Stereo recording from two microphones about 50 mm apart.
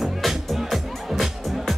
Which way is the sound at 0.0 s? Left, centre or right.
Centre.